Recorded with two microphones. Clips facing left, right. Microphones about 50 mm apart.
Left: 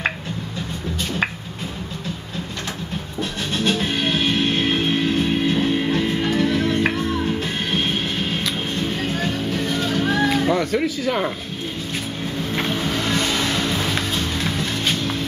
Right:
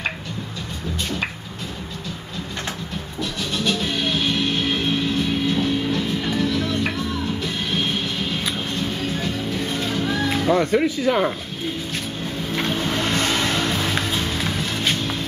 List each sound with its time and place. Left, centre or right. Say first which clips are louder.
3.2 s music: left 1 dB; left
10.3 s music: even; centre
10.6 s speech: right 2 dB; centre
12.5 s vehicle: even; centre
13.3 s music: even; centre
13.7 s music: even; centre